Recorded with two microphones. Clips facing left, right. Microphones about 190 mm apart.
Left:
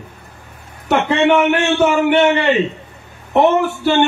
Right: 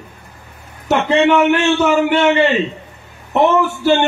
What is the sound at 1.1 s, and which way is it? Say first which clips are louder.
Speech: right 2 dB; 55° left (ahead or behind).